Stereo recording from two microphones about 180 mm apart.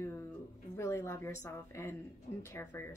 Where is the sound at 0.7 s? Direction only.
15° left (ahead or behind).